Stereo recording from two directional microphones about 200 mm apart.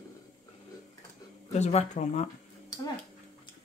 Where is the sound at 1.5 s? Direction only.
35° left (ahead or behind).